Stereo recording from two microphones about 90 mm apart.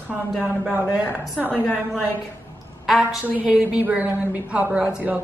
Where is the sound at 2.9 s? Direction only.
Centre (ahead or behind).